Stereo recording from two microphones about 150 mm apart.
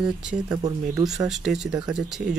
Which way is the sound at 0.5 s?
25° right (ahead or behind).